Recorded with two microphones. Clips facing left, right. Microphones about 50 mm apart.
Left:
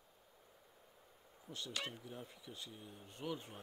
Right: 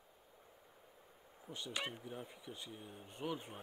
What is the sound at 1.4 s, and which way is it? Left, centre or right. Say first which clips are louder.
Speech: right 2 dB; centre.